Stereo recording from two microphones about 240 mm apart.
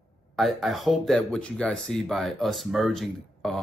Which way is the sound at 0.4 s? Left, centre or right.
Centre.